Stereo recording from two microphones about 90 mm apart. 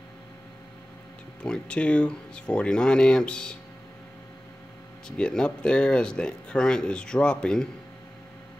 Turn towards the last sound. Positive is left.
turn(degrees=10)  # may be behind; listen again after turning